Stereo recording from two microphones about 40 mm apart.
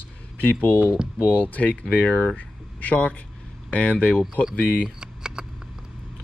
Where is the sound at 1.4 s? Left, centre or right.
Left.